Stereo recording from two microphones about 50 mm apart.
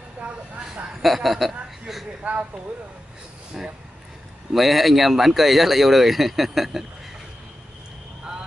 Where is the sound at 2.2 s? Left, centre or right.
Right.